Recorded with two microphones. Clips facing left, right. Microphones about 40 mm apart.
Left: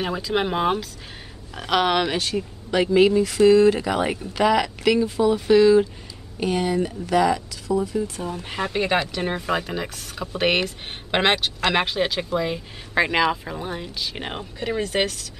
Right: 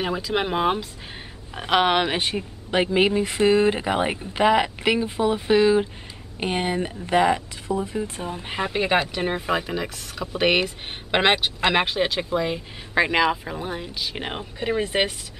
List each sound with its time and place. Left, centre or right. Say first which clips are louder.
0.0 s speech: left 1 dB; centre
1.5 s speech: right 1 dB; right
14.8 s speech: left 1 dB; centre